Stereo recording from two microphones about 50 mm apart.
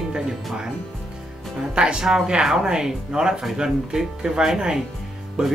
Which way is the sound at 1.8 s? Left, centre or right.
Centre.